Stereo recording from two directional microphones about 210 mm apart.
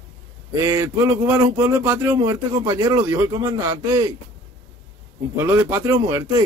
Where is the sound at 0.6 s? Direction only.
15° right (ahead or behind).